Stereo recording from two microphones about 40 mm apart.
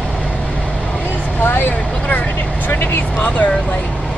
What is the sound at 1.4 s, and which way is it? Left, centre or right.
Speech, left.